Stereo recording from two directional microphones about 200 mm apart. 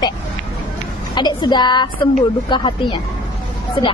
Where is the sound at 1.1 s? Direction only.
20° left (ahead or behind).